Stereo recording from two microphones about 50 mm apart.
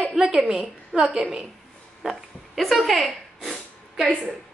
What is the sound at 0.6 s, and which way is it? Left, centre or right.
Speech, centre.